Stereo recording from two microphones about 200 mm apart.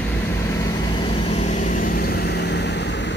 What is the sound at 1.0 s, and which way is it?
Vehicle, 35° left (ahead or behind).